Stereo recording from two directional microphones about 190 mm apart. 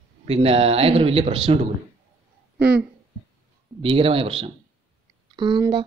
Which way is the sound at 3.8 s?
30° right (ahead or behind).